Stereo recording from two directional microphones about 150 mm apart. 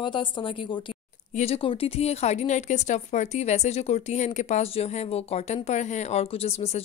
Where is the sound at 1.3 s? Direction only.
45° left (ahead or behind).